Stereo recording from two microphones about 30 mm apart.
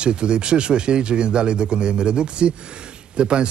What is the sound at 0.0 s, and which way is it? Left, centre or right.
Speech, right.